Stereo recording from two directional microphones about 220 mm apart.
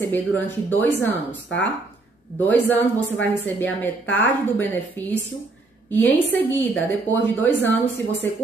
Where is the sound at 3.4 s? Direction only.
10° left (ahead or behind).